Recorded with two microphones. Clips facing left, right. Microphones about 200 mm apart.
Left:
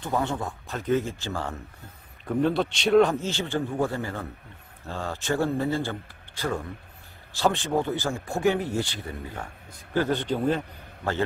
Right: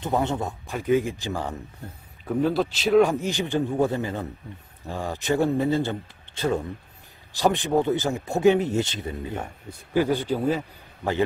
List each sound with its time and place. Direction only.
0.0 s a man's voice: 20° right (ahead or behind)
2.2 s a man's voice: centre (ahead or behind); by 9.5 s 20° right (ahead or behind)
9.9 s a man's voice: 10° right (ahead or behind)